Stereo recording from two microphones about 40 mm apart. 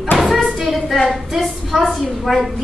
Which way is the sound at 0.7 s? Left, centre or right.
Centre.